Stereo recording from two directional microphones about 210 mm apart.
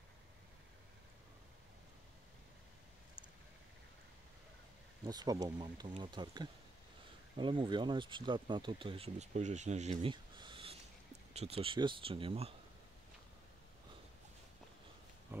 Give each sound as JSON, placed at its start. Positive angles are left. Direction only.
{"t": 5.0, "sound": "speech", "side_deg": -20}